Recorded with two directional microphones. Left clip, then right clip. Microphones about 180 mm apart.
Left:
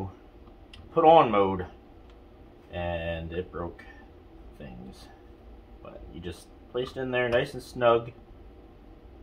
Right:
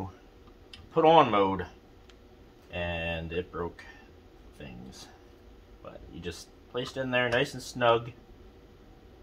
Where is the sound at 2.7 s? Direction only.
45° right (ahead or behind).